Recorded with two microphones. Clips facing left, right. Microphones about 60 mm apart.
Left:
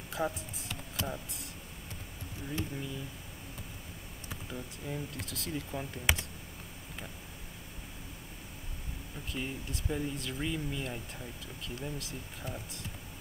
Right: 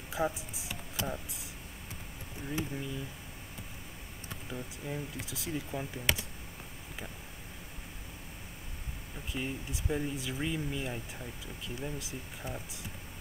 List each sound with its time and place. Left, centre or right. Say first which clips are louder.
0.1 s speech: right 2 dB; centre
4.3 s speech: right 1 dB; centre
6.1 s speech: left 1 dB; centre
9.3 s speech: right 1 dB; centre